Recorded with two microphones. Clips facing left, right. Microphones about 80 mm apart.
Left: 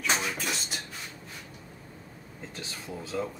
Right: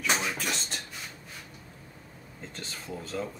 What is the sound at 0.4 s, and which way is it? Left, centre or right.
Speech, centre.